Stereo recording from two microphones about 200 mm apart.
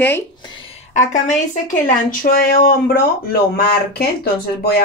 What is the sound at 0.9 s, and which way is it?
Speech, 40° left (ahead or behind).